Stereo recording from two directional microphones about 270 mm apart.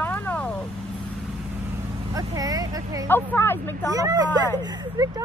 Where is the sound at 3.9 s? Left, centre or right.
Centre.